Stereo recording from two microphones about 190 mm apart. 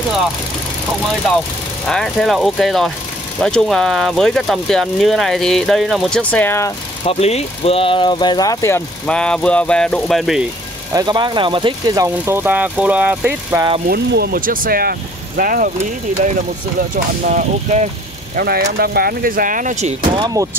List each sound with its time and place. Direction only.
1.9 s speech: 5° left (ahead or behind)
7.1 s speech: 35° left (ahead or behind); by 10.4 s centre (ahead or behind)
10.9 s speech: 20° right (ahead or behind)
13.8 s speech: 55° right (ahead or behind)
16.9 s speech: 45° right (ahead or behind)
18.3 s speech: 55° right (ahead or behind)
20.1 s speech: 20° right (ahead or behind)